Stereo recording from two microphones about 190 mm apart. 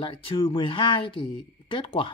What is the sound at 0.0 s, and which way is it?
Speech, 25° left (ahead or behind).